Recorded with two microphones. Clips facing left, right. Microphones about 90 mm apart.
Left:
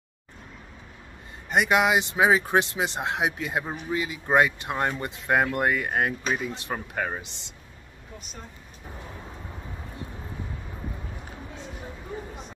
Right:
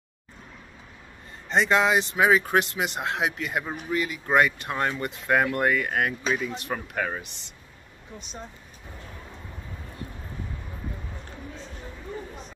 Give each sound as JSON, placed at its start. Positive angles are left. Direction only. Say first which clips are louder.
{"t": 1.5, "sound": "speech", "louder": "even", "side_deg": 10}